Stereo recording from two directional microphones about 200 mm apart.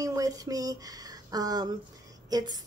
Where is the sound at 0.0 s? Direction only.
15° right (ahead or behind).